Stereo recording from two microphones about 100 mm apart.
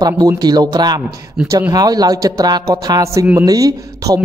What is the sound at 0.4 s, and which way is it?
A man's voice, 40° right (ahead or behind).